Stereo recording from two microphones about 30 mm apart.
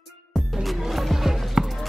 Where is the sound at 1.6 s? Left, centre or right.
Centre.